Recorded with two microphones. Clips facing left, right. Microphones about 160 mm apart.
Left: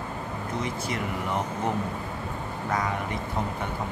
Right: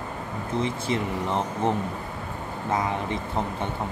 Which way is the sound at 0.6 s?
25° right (ahead or behind).